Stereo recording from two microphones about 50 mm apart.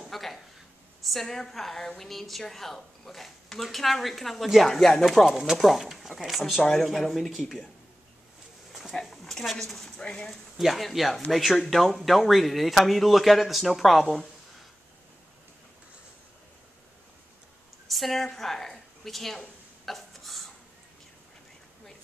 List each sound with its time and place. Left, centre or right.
0.1 s a sound: centre
1.0 s a woman's voice: centre
9.2 s a woman's voice: centre
9.9 s speech: centre
10.6 s a woman's voice: centre
17.8 s a woman's voice: centre
19.9 s a sound: centre